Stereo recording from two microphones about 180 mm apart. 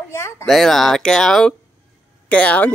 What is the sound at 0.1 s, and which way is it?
Speech, 15° left (ahead or behind).